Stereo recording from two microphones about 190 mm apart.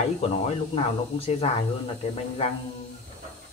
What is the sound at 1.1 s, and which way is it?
Speech, 30° left (ahead or behind).